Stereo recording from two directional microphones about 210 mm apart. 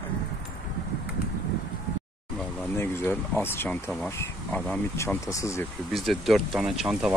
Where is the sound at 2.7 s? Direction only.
10° left (ahead or behind).